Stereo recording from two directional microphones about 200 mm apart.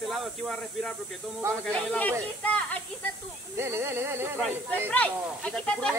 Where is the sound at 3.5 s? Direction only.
10° right (ahead or behind).